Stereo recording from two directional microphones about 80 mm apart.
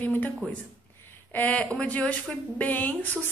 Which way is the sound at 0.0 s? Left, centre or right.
Left.